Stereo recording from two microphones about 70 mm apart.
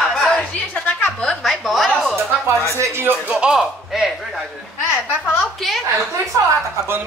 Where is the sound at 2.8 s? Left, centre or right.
Right.